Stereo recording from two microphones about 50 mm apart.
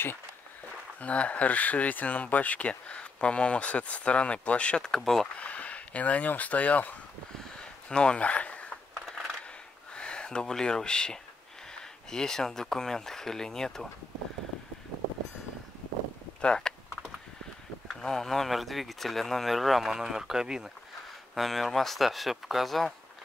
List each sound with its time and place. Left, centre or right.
1.0 s speech: left; by 5.3 s centre
5.4 s speech: left
7.5 s a sound: centre
9.9 s speech: centre
16.3 s speech: centre
18.0 s speech: centre
21.4 s speech: centre